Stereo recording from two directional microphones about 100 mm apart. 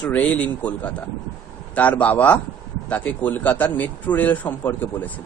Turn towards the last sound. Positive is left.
turn(degrees=15)  # may be behind; listen again after turning